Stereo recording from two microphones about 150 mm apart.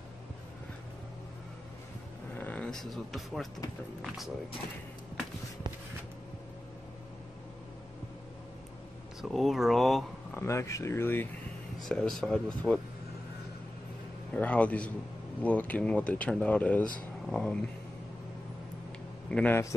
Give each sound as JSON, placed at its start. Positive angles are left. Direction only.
{"t": 2.3, "sound": "speech", "side_deg": 10}
{"t": 9.2, "sound": "speech", "side_deg": 0}
{"t": 10.3, "sound": "speech", "side_deg": 20}
{"t": 11.8, "sound": "speech", "side_deg": 5}
{"t": 14.3, "sound": "speech", "side_deg": 10}
{"t": 19.3, "sound": "speech", "side_deg": 15}